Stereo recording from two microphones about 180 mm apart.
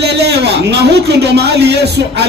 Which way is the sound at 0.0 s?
65° right (ahead or behind).